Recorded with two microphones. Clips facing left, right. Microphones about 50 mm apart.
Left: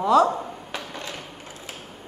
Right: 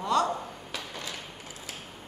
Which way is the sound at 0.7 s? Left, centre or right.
Left.